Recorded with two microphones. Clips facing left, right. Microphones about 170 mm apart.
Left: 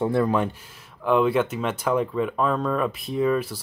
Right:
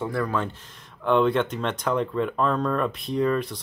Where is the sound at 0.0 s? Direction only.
25° left (ahead or behind).